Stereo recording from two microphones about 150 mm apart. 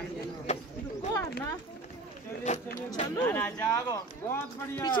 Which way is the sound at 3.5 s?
20° left (ahead or behind).